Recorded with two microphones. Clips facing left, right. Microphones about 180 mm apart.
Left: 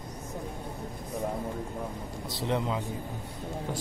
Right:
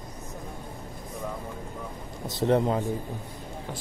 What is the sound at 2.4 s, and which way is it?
Speech, 45° right (ahead or behind).